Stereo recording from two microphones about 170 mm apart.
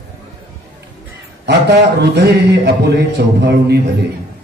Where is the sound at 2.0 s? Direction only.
80° right.